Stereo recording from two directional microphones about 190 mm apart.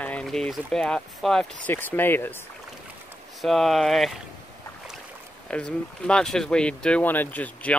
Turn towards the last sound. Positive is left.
turn(degrees=5)  # may be behind; listen again after turning